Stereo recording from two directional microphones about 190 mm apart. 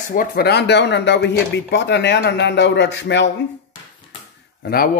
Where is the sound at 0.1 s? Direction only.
50° left (ahead or behind); by 3.3 s 65° left (ahead or behind).